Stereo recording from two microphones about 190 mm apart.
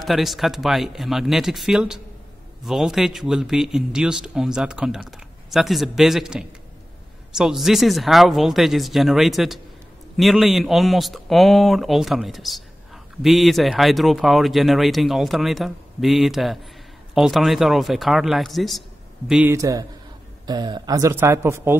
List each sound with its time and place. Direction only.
0.0 s speech: centre (ahead or behind)
19.5 s speech: 15° right (ahead or behind)